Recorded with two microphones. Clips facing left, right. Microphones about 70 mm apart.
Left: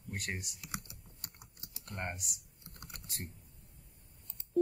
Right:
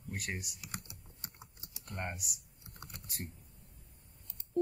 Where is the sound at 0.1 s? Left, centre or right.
Centre.